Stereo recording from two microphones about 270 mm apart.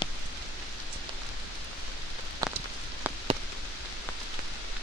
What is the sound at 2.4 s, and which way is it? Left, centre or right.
Rain on surface, centre.